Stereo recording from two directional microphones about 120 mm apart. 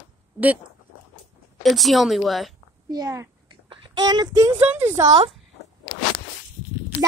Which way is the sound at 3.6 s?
45° right (ahead or behind).